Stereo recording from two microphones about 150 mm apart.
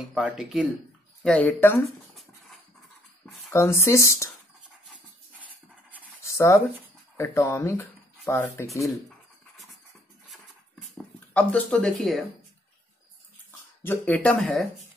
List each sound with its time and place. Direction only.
0.1 s speech: centre (ahead or behind)
1.2 s speech: 10° left (ahead or behind)
1.8 s a sound: centre (ahead or behind)
3.5 s speech: 20° left (ahead or behind)
6.2 s speech: 20° left (ahead or behind)
11.1 s speech: 10° left (ahead or behind)
13.8 s speech: 10° left (ahead or behind)